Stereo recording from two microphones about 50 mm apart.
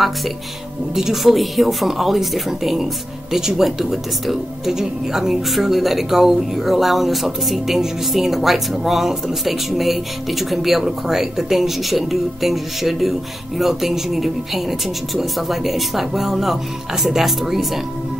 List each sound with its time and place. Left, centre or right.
0.9 s speech: centre